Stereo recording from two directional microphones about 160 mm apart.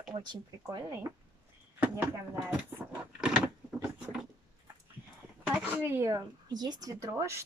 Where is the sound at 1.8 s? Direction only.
10° right (ahead or behind).